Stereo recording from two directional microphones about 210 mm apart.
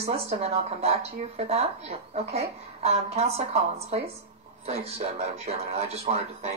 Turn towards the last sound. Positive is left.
turn(degrees=-30)  # may be behind; listen again after turning